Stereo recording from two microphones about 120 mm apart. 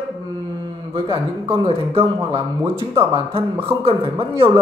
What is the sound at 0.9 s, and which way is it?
Speech, 45° right (ahead or behind).